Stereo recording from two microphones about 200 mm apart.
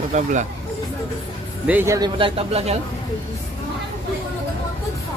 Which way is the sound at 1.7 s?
10° right (ahead or behind).